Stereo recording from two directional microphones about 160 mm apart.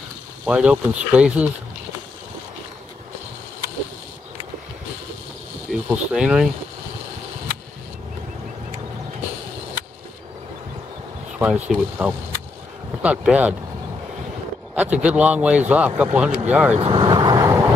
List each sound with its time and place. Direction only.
0.5 s speech: 5° right (ahead or behind)
5.7 s speech: 5° right (ahead or behind)
11.3 s speech: 5° right (ahead or behind)
14.8 s speech: 10° right (ahead or behind)
16.8 s vehicle: 30° right (ahead or behind)